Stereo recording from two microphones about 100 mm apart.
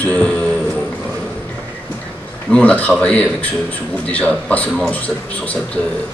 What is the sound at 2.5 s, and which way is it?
Speech, 15° left (ahead or behind).